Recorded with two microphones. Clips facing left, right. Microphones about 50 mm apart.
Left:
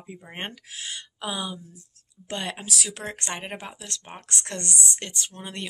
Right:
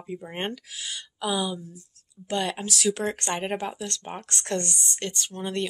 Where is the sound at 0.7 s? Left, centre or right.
Left.